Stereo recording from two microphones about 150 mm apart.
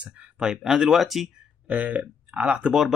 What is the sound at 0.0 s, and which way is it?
Speech, 5° right (ahead or behind).